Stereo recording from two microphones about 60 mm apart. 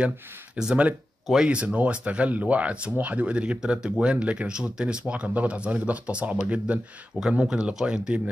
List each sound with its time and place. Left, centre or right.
0.6 s speech: centre